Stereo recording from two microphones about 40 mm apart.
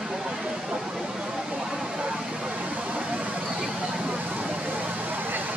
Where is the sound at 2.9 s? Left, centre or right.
Right.